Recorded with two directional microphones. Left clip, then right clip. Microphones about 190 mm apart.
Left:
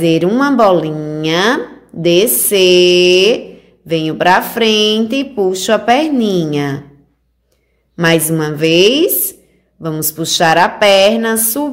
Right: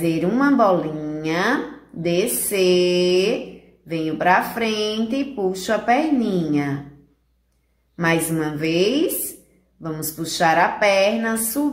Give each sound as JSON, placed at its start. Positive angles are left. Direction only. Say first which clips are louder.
{"t": 0.0, "sound": "a woman's voice", "louder": "left 8 dB", "side_deg": 45}
{"t": 7.9, "sound": "a woman's voice", "louder": "left 8 dB", "side_deg": 45}